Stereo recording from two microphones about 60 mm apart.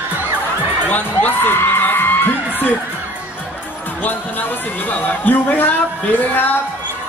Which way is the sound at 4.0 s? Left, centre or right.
Left.